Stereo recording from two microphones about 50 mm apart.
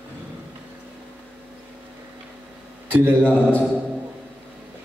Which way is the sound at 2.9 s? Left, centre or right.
Right.